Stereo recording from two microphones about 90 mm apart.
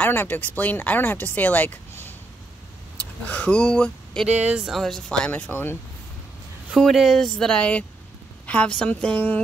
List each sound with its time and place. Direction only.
0.0 s speech: 20° left (ahead or behind)
4.3 s speech: 15° right (ahead or behind)
4.7 s speech: 5° left (ahead or behind)
5.3 s speech: 20° left (ahead or behind)
6.7 s speech: centre (ahead or behind); by 9.4 s 15° left (ahead or behind)